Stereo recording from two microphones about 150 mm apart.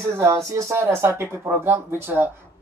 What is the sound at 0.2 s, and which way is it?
Speech, 20° right (ahead or behind).